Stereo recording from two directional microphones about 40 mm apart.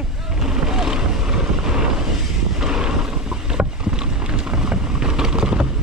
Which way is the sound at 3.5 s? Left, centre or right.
Centre.